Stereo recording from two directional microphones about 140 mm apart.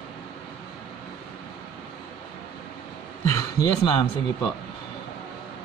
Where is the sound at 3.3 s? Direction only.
20° left (ahead or behind).